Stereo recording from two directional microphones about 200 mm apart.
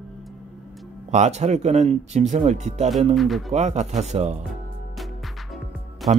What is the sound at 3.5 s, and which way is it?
Speech, 35° right (ahead or behind).